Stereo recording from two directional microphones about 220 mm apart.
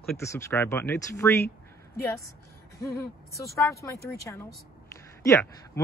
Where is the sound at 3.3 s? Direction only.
15° left (ahead or behind).